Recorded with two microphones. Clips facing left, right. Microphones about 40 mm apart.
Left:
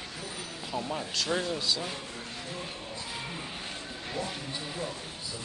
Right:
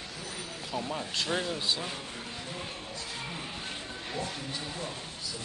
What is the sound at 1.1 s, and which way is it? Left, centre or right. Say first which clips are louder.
Speech: left 1 dB; centre.